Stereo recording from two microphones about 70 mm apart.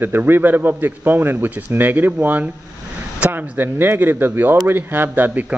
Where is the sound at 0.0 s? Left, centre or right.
Right.